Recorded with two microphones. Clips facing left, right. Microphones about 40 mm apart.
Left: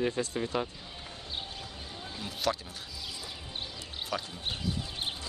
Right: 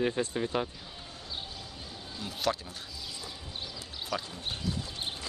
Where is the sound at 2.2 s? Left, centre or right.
Centre.